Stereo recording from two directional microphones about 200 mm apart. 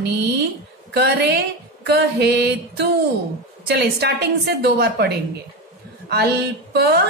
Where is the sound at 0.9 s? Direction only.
55° right (ahead or behind).